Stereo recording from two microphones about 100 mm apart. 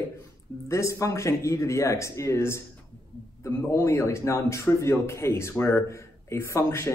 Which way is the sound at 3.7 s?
30° left (ahead or behind).